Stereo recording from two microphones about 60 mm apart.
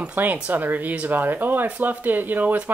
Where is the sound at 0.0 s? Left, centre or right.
Right.